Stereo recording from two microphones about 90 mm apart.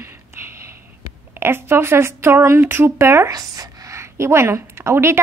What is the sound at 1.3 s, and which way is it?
Speech, 25° right (ahead or behind).